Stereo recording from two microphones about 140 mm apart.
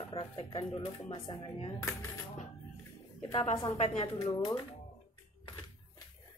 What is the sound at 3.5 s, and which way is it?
Speech, 35° left (ahead or behind).